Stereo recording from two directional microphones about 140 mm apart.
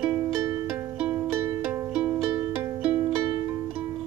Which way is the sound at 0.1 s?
25° right (ahead or behind).